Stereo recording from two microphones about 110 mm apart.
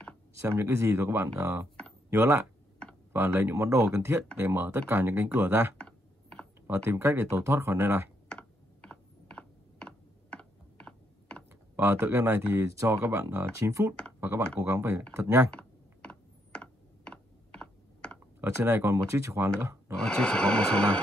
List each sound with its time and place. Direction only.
0.4 s speech: 25° right (ahead or behind)
5.8 s computer keyboard: 10° left (ahead or behind)
6.7 s speech: 25° right (ahead or behind)
8.3 s computer keyboard: 10° left (ahead or behind)
11.7 s speech: 20° right (ahead or behind)
15.5 s computer keyboard: 10° left (ahead or behind)
18.4 s speech: 20° right (ahead or behind)
20.0 s music: 10° left (ahead or behind)